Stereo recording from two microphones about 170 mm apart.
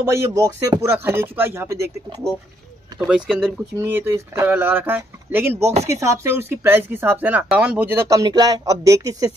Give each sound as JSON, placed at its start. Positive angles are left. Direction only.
{"t": 0.1, "sound": "speech", "side_deg": -15}
{"t": 3.1, "sound": "speech", "side_deg": -5}
{"t": 3.7, "sound": "speech", "side_deg": -15}